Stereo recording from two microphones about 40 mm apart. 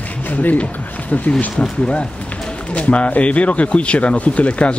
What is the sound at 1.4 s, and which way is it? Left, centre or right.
Speech, left.